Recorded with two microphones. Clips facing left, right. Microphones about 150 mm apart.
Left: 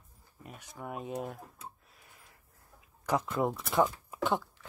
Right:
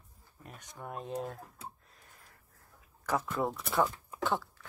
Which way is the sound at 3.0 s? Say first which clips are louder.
Left 2 dB; 15° left (ahead or behind).